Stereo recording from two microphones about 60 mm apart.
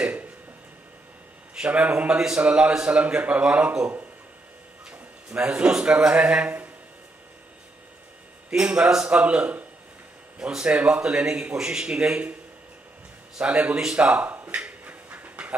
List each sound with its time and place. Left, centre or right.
0.0 s a sound: right
1.5 s a man's voice: centre
5.3 s speech: centre
8.5 s a man's voice: centre
13.4 s speech: centre
14.5 s dog: right